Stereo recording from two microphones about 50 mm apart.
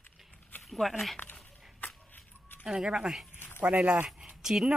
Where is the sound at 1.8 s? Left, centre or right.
Left.